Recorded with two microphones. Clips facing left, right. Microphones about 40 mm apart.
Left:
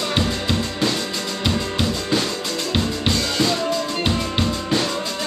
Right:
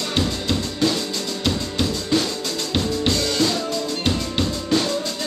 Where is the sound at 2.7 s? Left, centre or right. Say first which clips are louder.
Right 1 dB; centre.